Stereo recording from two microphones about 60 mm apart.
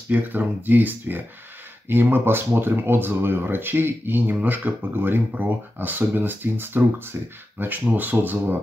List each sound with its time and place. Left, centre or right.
0.1 s speech: right